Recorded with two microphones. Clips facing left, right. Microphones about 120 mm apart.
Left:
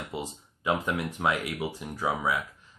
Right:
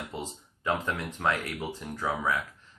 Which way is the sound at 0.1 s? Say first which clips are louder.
Left 2 dB; 15° left (ahead or behind).